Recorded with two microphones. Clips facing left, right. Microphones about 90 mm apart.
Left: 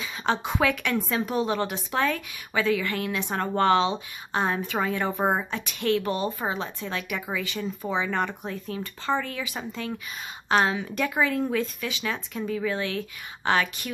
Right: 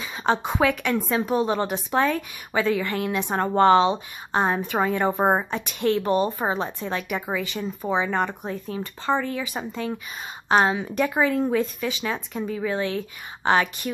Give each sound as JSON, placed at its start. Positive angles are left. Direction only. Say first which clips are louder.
{"t": 0.2, "sound": "speech", "louder": "right 3 dB", "side_deg": -20}
{"t": 9.4, "sound": "speech", "louder": "right 3 dB", "side_deg": -35}
{"t": 10.5, "sound": "speech", "louder": "right 3 dB", "side_deg": -25}